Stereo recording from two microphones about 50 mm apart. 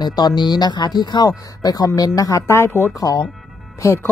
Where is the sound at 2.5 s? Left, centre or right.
Left.